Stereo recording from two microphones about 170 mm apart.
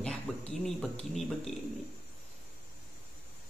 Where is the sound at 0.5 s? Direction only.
Centre (ahead or behind).